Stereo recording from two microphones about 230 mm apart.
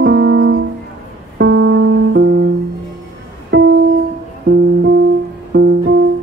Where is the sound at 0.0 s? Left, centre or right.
Right.